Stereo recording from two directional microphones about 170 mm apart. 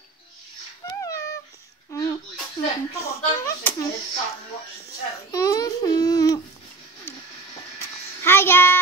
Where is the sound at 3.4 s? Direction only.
15° left (ahead or behind).